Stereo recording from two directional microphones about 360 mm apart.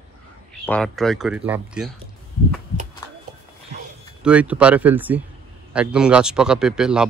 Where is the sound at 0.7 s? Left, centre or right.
Centre.